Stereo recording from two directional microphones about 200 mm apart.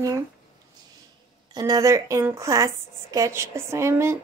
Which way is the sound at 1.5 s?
20° right (ahead or behind).